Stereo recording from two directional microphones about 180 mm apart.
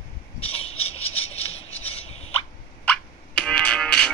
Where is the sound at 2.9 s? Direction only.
5° left (ahead or behind).